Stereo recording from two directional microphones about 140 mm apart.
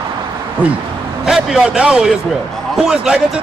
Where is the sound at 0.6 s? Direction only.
10° right (ahead or behind).